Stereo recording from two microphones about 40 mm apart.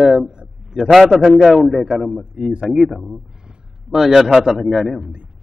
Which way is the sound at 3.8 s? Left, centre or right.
Centre.